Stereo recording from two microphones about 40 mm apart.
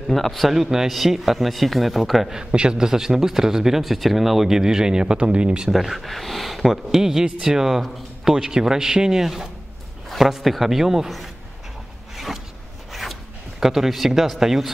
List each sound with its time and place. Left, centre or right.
0.1 s a man's voice: centre
0.6 s a man's voice: centre
2.3 s a man's voice: right
2.9 s speech: centre; by 5.7 s right
5.7 s a man's voice: centre
12.9 s zipper: centre
13.7 s a man's voice: centre